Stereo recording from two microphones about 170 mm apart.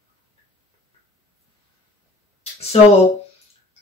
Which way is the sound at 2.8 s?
40° left (ahead or behind).